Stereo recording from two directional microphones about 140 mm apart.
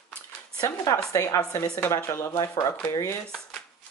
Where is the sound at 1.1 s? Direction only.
20° left (ahead or behind).